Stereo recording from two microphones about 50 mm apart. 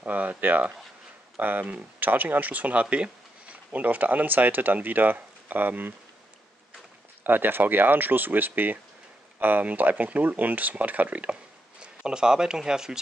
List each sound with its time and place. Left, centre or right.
0.0 s speech: right
7.2 s speech: right
11.8 s speech: centre